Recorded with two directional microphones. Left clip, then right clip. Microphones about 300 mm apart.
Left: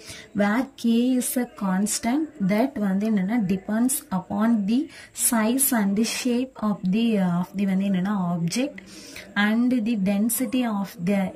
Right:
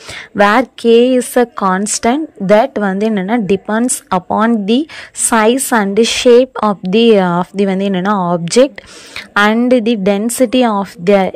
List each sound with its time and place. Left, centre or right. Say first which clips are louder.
0.4 s a woman's voice: right 15 dB; centre